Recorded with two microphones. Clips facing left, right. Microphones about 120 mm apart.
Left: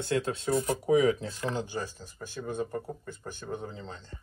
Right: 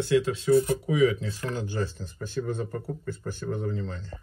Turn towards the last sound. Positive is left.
turn(degrees=20)  # may be behind; listen again after turning